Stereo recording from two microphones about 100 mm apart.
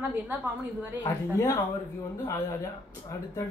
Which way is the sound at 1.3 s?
30° left (ahead or behind).